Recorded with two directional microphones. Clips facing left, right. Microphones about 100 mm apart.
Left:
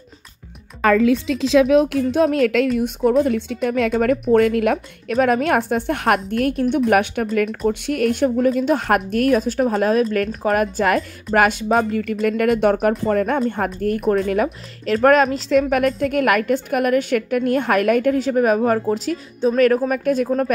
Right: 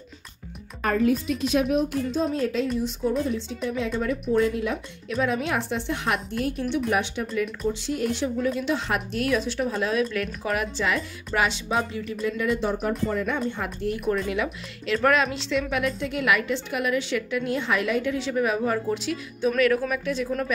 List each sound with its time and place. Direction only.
0.8 s a woman's voice: 90° left; by 18.8 s 50° left (ahead or behind)
18.9 s speech: 35° left (ahead or behind)